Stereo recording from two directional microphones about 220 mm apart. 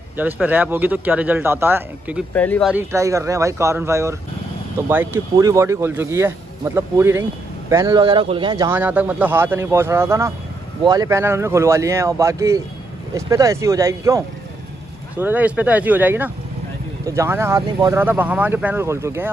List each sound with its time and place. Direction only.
0.2 s speech: 10° right (ahead or behind)
2.3 s speech: 5° left (ahead or behind)
2.7 s speech: 10° right (ahead or behind)
8.6 s speech: 10° right (ahead or behind)